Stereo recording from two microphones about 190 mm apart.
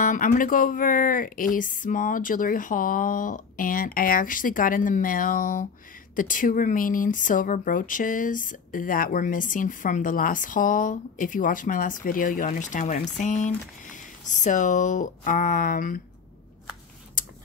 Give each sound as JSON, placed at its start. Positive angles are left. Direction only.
{"t": 0.0, "sound": "speech", "side_deg": 45}